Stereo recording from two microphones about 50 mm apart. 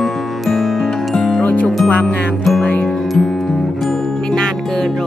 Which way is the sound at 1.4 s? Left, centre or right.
Left.